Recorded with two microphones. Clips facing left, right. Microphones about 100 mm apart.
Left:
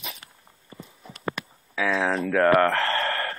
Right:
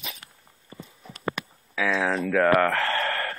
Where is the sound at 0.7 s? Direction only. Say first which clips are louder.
Even; centre (ahead or behind).